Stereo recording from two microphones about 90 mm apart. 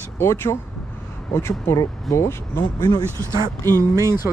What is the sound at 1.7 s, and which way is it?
Speech, 35° left (ahead or behind).